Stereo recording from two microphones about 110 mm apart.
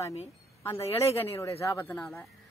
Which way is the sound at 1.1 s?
30° left (ahead or behind).